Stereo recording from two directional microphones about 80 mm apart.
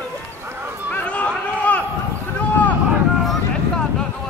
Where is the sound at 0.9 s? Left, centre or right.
Centre.